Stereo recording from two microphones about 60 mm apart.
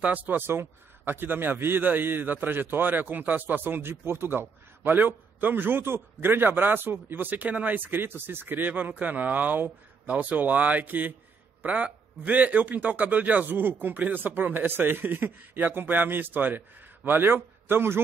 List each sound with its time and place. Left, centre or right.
0.0 s a man's voice: right